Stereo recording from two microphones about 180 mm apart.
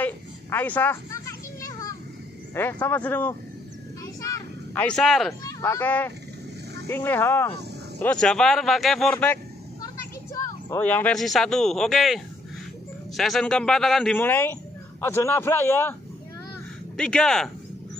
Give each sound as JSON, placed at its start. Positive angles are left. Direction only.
{"t": 0.0, "sound": "children playing", "side_deg": 10}
{"t": 2.5, "sound": "speech", "side_deg": 10}
{"t": 4.2, "sound": "a sound", "side_deg": 20}
{"t": 4.8, "sound": "speech", "side_deg": 0}
{"t": 5.4, "sound": "speech", "side_deg": 15}
{"t": 10.3, "sound": "speech", "side_deg": 15}